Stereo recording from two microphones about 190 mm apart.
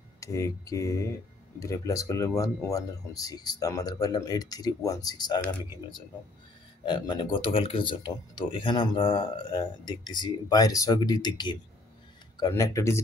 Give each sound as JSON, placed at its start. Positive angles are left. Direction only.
{"t": 0.2, "sound": "speech", "side_deg": 15}
{"t": 6.9, "sound": "speech", "side_deg": 25}